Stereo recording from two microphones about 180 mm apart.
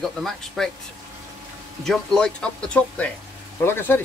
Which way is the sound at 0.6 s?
Centre (ahead or behind).